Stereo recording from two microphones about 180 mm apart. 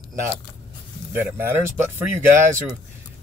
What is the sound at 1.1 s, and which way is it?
Speech, 10° right (ahead or behind).